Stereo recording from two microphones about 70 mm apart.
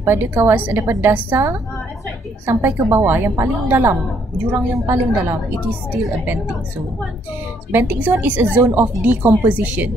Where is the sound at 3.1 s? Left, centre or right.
Right.